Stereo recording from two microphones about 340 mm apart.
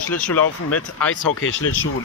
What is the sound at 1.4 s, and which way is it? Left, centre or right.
Speech, left.